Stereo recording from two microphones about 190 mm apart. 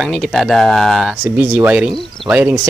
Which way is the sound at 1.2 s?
10° right (ahead or behind).